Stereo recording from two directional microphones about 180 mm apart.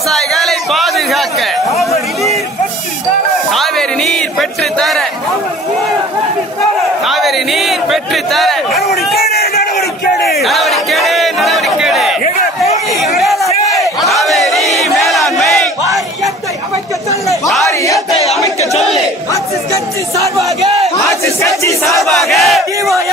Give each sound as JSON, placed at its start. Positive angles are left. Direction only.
{"t": 0.1, "sound": "a sound", "side_deg": 0}
{"t": 3.5, "sound": "music", "side_deg": 0}
{"t": 7.1, "sound": "speech", "side_deg": 0}
{"t": 9.2, "sound": "crowd", "side_deg": 60}
{"t": 10.4, "sound": "crowd", "side_deg": 0}
{"t": 13.0, "sound": "a sound", "side_deg": 0}
{"t": 14.0, "sound": "battle cry", "side_deg": 0}
{"t": 17.6, "sound": "battle cry", "side_deg": 20}
{"t": 21.2, "sound": "battle cry", "side_deg": 15}
{"t": 22.0, "sound": "battle cry", "side_deg": 0}